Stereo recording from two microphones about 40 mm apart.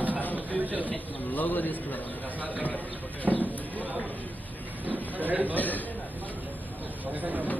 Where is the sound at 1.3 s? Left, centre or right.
Left.